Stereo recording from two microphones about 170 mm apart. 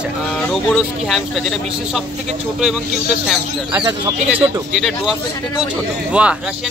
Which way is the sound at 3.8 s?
25° right (ahead or behind).